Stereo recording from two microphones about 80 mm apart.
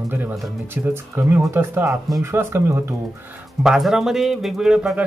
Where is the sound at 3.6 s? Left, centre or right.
Centre.